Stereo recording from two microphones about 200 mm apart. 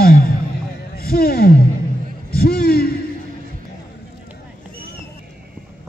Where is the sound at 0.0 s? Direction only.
50° left (ahead or behind).